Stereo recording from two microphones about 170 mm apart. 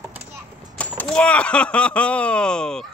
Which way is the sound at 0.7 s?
5° left (ahead or behind).